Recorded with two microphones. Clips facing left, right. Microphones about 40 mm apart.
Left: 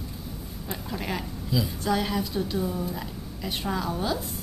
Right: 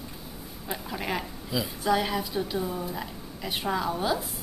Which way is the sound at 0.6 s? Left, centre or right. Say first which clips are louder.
Right 1 dB; centre.